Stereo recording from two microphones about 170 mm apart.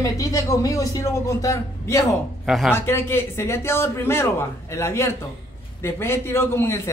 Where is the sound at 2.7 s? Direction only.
15° left (ahead or behind).